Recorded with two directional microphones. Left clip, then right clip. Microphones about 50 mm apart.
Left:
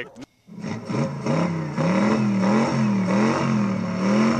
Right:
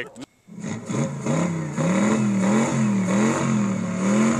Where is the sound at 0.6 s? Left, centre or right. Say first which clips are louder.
Left 1 dB; centre.